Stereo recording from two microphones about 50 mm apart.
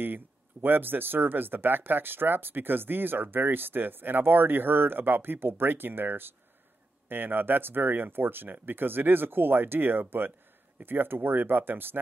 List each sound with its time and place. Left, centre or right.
0.0 s speech: right